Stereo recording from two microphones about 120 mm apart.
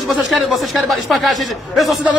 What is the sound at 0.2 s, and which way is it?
Speech, centre (ahead or behind).